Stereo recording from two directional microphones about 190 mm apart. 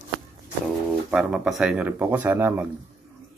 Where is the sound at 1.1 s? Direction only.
5° right (ahead or behind).